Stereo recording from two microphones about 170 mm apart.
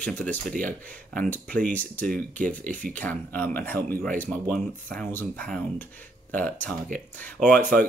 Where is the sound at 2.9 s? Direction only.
10° left (ahead or behind).